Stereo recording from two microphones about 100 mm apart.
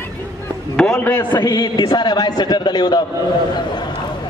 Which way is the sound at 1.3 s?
45° left (ahead or behind).